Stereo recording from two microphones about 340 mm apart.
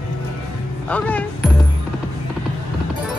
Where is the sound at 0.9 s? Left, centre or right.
Centre.